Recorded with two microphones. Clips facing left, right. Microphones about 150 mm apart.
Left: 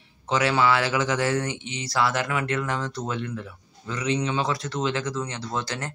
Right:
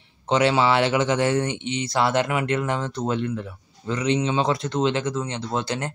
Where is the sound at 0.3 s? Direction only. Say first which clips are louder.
Right 3 dB; 25° right (ahead or behind).